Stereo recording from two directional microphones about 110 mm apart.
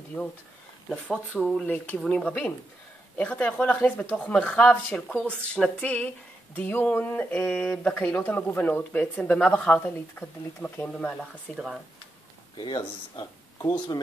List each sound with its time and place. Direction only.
1.0 s speech: 10° left (ahead or behind)
12.5 s speech: 40° left (ahead or behind)